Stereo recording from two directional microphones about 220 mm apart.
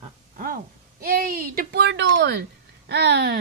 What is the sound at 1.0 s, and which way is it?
Speech, 40° right (ahead or behind).